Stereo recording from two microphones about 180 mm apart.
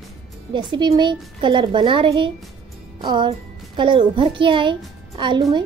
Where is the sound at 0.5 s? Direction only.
25° right (ahead or behind).